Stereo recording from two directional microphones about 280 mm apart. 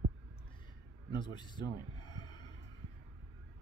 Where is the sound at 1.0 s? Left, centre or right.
Centre.